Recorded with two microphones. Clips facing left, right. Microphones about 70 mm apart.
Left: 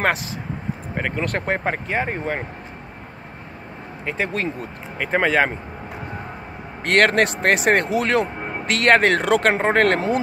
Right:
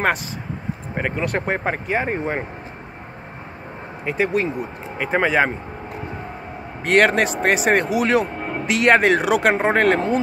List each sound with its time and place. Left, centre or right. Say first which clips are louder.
0.9 s speech: right 2 dB; centre
4.0 s speech: right 4 dB; centre
6.8 s speech: right 1 dB; centre